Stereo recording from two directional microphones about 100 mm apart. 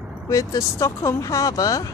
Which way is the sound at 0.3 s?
35° left (ahead or behind).